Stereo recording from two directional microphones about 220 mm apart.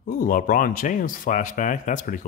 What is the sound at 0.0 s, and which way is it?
Speech, 40° left (ahead or behind).